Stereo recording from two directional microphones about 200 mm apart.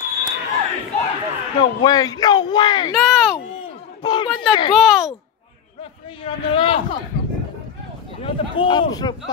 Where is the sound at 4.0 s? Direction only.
25° left (ahead or behind).